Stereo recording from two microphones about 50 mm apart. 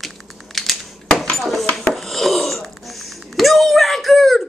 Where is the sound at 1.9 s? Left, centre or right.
Centre.